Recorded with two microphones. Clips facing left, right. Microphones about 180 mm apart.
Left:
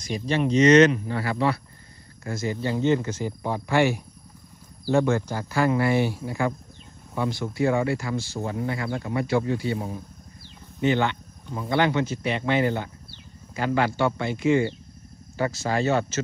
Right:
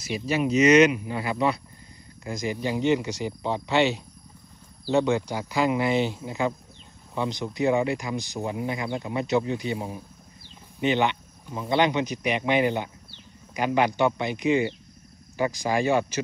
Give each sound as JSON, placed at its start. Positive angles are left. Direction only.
{"t": 0.0, "sound": "speech", "side_deg": -5}